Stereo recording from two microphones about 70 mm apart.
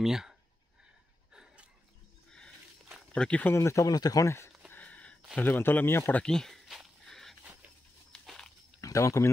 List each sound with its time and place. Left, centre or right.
0.0 s speech: centre
1.3 s wheeze: centre
3.2 s speech: centre
3.5 s speech: left
3.8 s speech: left
4.7 s a sound: centre
5.4 s speech: left
6.2 s speech: centre
7.1 s a sound: centre
8.3 s walk: centre
8.8 s speech: left